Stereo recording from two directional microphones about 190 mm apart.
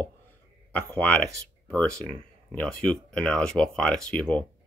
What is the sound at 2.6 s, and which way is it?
Speech, 5° left (ahead or behind).